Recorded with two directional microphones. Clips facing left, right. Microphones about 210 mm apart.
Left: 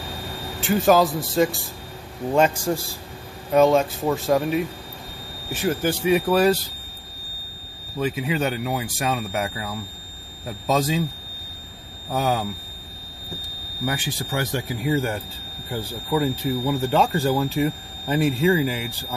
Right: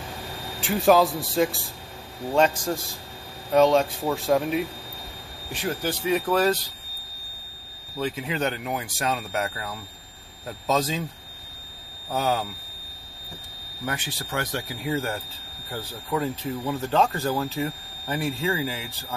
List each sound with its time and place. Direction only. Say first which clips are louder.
0.6 s speech: left 1 dB; centre (ahead or behind)
8.0 s speech: left 3 dB; 10° left (ahead or behind)
12.1 s speech: left 2 dB; 10° left (ahead or behind)
13.8 s speech: left 4 dB; 10° left (ahead or behind)
17.6 s speech: left 6 dB; 20° left (ahead or behind)